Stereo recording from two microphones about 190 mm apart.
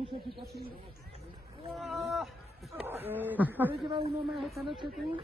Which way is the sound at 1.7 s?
Centre (ahead or behind).